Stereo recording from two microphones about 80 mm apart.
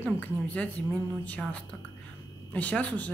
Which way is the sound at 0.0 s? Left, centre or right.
Centre.